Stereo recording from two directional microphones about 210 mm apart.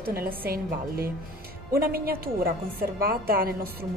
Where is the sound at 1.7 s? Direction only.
45° right (ahead or behind).